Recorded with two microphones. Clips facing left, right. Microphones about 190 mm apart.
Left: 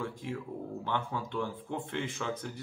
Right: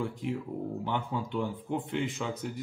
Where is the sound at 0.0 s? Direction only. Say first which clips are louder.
Right 4 dB; 15° right (ahead or behind).